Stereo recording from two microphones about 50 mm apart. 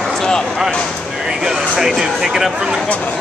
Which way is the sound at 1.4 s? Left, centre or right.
Centre.